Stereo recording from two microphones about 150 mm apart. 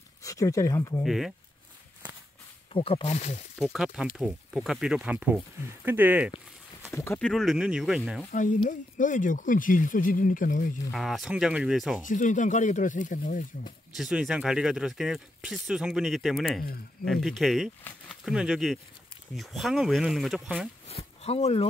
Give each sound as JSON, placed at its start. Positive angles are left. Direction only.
{"t": 0.2, "sound": "speech", "side_deg": 20}
{"t": 1.0, "sound": "speech", "side_deg": 0}
{"t": 2.7, "sound": "speech", "side_deg": 40}
{"t": 3.5, "sound": "speech", "side_deg": -5}
{"t": 6.9, "sound": "speech", "side_deg": 15}
{"t": 7.2, "sound": "speech", "side_deg": 5}
{"t": 8.6, "sound": "speech", "side_deg": 60}
{"t": 10.9, "sound": "speech", "side_deg": 0}
{"t": 12.0, "sound": "speech", "side_deg": 60}
{"t": 13.9, "sound": "speech", "side_deg": -5}
{"t": 17.9, "sound": "speech", "side_deg": 10}
{"t": 18.2, "sound": "speech", "side_deg": -5}
{"t": 20.9, "sound": "speech", "side_deg": 45}